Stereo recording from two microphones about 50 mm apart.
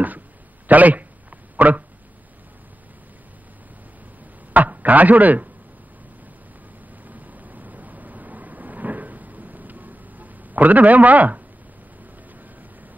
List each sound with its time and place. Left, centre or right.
0.7 s a man's voice: right
4.6 s a man's voice: right
7.1 s vehicle: right